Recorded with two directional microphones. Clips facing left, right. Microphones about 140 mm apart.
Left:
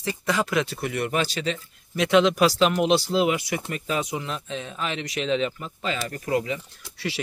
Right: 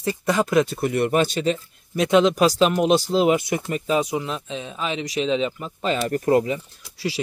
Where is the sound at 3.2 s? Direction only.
30° right (ahead or behind).